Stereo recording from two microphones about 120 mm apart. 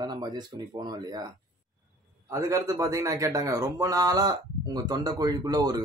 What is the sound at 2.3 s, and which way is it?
A man's voice, 25° right (ahead or behind).